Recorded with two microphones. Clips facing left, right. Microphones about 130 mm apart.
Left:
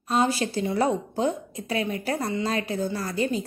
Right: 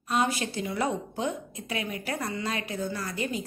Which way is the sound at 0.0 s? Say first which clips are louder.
Left 4 dB; 30° left (ahead or behind).